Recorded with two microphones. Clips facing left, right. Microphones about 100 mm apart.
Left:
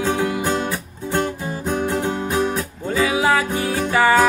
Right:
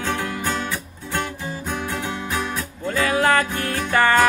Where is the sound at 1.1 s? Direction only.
40° left (ahead or behind).